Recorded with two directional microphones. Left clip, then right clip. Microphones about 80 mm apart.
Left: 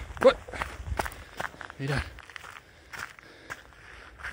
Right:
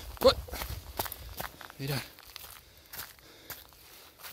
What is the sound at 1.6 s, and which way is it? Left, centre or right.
Speech, centre.